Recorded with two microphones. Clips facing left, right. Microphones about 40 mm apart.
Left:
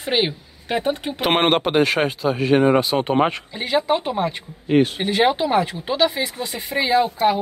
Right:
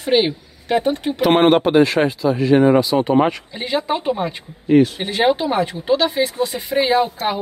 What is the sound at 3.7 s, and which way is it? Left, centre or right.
Speech, centre.